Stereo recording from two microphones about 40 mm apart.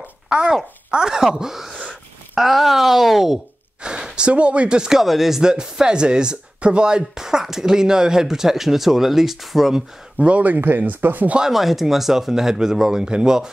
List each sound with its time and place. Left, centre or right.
0.8 s speech: centre
3.8 s speech: right
5.0 s speech: centre
5.4 s speech: centre
10.1 s speech: right
10.4 s speech: right
11.4 s speech: centre